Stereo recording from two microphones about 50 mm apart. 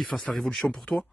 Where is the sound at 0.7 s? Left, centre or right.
Left.